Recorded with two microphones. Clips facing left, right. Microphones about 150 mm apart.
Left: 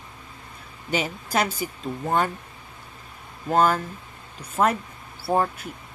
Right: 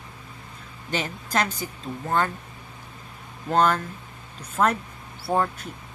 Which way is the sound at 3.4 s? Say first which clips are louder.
Left 1 dB; 10° left (ahead or behind).